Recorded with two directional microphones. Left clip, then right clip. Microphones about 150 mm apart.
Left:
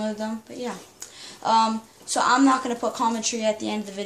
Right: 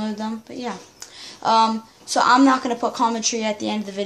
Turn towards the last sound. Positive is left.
turn(degrees=-50)  # may be behind; listen again after turning